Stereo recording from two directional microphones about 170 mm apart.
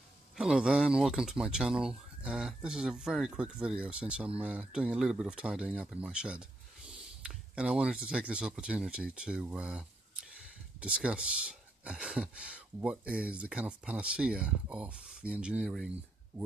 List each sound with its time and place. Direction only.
0.4 s speech: 5° right (ahead or behind)